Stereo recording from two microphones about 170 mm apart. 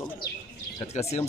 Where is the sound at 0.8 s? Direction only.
40° left (ahead or behind).